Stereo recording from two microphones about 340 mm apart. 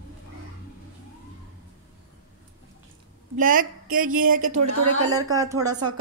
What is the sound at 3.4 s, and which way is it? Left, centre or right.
A woman's voice, right.